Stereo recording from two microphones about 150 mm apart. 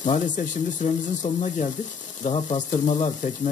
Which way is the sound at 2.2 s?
45° left (ahead or behind).